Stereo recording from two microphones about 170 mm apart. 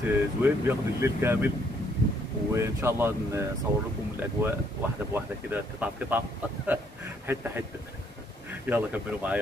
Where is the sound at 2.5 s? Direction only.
15° right (ahead or behind).